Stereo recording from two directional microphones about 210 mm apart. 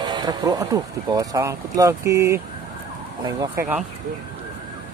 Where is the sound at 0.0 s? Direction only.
20° right (ahead or behind).